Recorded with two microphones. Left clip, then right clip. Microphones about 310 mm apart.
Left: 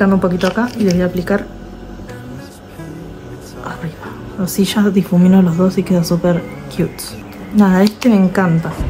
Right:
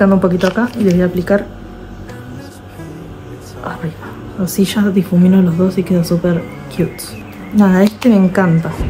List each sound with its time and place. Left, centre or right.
0.0 s speech: centre
4.4 s speech: centre